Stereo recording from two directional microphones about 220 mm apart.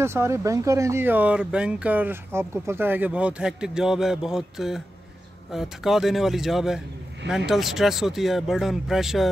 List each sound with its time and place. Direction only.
0.0 s speech: 10° right (ahead or behind)